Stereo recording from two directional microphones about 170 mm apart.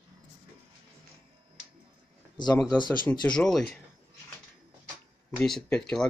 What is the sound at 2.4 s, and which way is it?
Speech, 25° left (ahead or behind).